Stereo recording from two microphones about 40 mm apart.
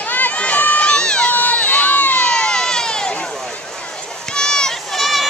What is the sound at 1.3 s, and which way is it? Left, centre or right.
Crowd, left.